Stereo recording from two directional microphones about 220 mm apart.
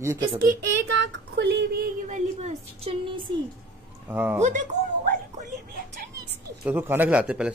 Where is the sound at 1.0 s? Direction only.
55° right (ahead or behind); by 3.3 s 30° right (ahead or behind).